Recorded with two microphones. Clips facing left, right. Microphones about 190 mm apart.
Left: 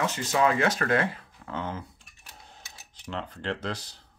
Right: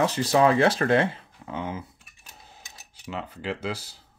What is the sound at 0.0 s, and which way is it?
Speech, 35° right (ahead or behind).